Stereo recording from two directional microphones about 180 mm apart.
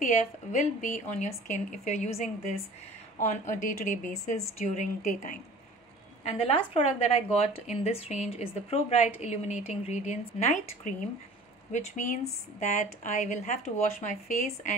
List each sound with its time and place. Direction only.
0.0 s a woman's voice: 40° left (ahead or behind)
6.3 s a woman's voice: 30° left (ahead or behind)